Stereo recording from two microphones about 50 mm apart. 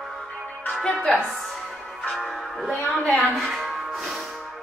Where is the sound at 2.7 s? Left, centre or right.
Left.